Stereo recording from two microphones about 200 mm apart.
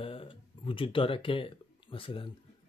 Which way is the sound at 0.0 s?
25° left (ahead or behind).